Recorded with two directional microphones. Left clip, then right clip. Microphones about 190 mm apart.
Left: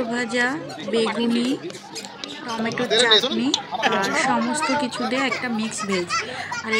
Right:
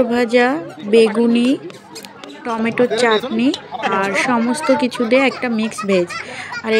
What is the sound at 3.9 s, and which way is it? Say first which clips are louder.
A woman's voice: right 5 dB; 10° right (ahead or behind).